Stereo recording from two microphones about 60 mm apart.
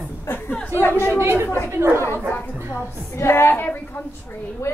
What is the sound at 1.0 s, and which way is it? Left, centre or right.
Speech, right.